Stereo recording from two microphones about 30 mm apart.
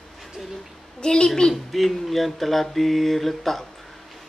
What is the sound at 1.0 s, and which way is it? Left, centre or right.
Speech, left.